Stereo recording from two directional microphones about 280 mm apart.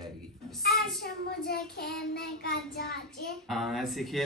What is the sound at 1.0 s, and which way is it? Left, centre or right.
Child singing, left.